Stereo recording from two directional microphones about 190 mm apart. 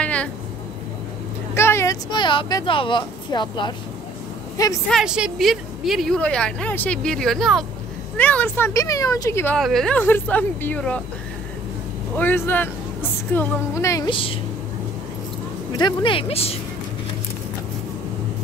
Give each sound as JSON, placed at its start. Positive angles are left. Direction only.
{"t": 0.0, "sound": "a sound", "side_deg": 5}
{"t": 1.5, "sound": "speech", "side_deg": 15}
{"t": 4.8, "sound": "a woman's voice", "side_deg": 0}
{"t": 9.6, "sound": "speech", "side_deg": 0}
{"t": 12.2, "sound": "speech", "side_deg": 10}
{"t": 15.7, "sound": "speech", "side_deg": 25}